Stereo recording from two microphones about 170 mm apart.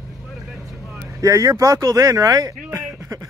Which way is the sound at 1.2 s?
20° right (ahead or behind).